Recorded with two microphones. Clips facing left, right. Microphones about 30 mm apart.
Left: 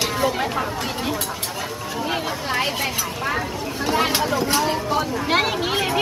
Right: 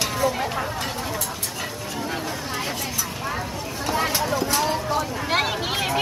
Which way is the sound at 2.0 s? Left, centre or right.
Left.